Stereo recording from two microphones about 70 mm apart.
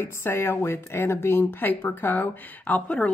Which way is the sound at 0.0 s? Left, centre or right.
Left.